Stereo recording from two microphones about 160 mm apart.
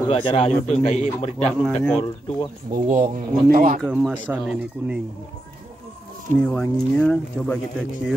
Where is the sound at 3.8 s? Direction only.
10° right (ahead or behind).